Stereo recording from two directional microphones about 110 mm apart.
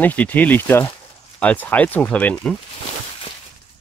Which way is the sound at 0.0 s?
15° left (ahead or behind).